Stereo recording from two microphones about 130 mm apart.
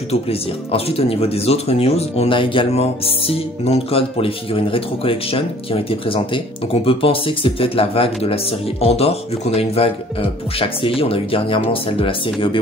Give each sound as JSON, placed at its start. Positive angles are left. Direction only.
{"t": 0.1, "sound": "speech", "side_deg": 50}
{"t": 11.0, "sound": "speech", "side_deg": 45}